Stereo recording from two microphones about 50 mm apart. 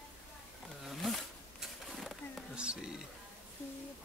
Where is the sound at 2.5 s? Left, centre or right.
Centre.